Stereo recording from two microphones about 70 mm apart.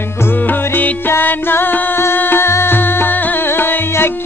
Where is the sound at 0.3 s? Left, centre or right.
Left.